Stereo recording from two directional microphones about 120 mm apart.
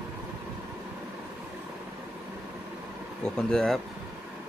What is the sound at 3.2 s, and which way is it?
Speech, 5° left (ahead or behind).